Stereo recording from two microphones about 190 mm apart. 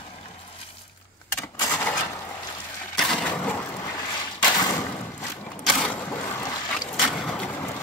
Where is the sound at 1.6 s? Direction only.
10° left (ahead or behind).